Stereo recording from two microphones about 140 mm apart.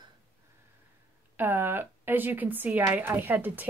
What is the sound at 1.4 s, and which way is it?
Speech, 15° right (ahead or behind).